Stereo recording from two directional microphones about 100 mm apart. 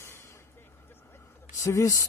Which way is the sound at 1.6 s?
30° left (ahead or behind).